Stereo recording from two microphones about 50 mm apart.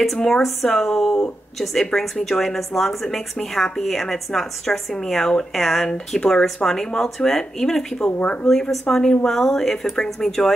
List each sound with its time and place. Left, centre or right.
0.2 s a woman's voice: centre
8.2 s a woman's voice: left
8.5 s a woman's voice: centre